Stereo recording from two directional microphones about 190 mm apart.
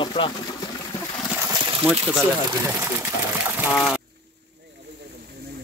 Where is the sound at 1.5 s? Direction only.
25° right (ahead or behind).